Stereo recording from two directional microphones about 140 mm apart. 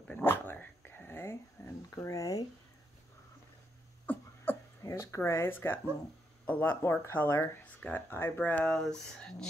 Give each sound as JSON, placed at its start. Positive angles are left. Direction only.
{"t": 0.1, "sound": "dog", "side_deg": 15}
{"t": 4.0, "sound": "a sound", "side_deg": 15}
{"t": 6.4, "sound": "speech", "side_deg": 10}